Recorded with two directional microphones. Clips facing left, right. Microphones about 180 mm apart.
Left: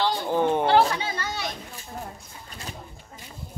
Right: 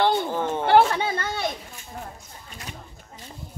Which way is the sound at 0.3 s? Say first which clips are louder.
Left 4 dB; 15° left (ahead or behind).